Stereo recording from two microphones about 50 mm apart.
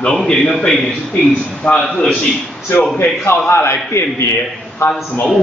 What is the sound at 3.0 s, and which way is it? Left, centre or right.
A man's voice, left.